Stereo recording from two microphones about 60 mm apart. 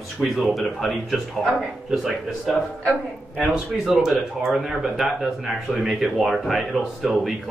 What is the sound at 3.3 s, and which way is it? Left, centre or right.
Speech, centre.